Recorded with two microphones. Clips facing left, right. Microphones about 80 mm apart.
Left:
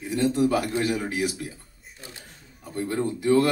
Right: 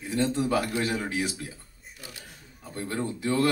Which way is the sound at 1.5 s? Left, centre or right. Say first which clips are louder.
Left 2 dB; left.